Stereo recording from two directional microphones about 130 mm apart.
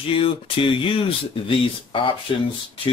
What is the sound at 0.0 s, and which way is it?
Speech, 45° left (ahead or behind).